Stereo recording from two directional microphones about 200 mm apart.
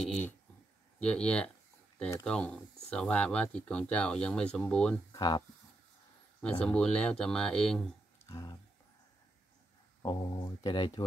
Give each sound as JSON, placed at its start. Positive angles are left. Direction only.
{"t": 0.0, "sound": "speech", "side_deg": 0}
{"t": 5.1, "sound": "speech", "side_deg": 20}
{"t": 6.6, "sound": "speech", "side_deg": 5}
{"t": 8.3, "sound": "speech", "side_deg": 15}
{"t": 10.0, "sound": "speech", "side_deg": 20}